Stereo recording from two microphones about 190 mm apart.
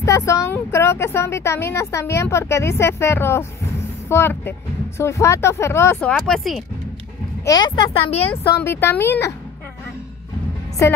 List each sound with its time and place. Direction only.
0.0 s speech: 15° left (ahead or behind); by 6.6 s centre (ahead or behind)
7.4 s speech: 20° left (ahead or behind)
8.2 s speech: 10° left (ahead or behind)